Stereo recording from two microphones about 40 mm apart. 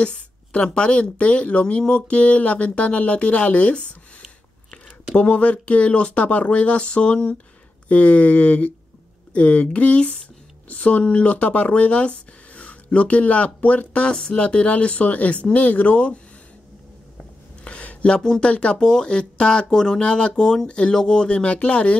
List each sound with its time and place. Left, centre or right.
0.0 s a woman's voice: left
5.1 s speech: left
17.6 s a sound: left
18.4 s a woman's voice: left
21.5 s speech: left